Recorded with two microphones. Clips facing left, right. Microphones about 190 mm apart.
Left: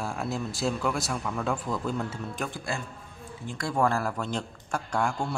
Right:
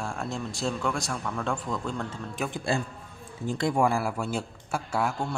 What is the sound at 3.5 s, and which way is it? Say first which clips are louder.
A man's voice: right 2 dB; 15° right (ahead or behind).